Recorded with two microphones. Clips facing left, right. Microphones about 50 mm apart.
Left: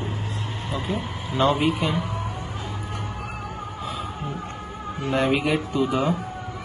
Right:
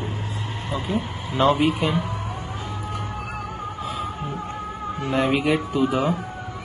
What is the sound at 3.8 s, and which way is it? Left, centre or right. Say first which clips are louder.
Music: right 2 dB; centre.